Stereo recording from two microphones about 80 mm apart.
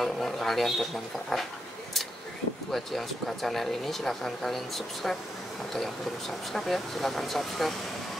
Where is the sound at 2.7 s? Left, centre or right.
Centre.